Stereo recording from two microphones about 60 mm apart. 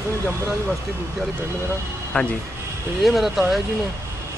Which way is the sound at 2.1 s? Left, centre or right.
Centre.